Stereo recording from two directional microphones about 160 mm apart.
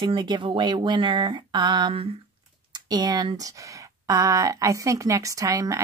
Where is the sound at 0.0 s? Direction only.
30° right (ahead or behind).